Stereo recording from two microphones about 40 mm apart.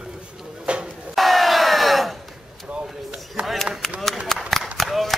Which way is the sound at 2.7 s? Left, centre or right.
Right.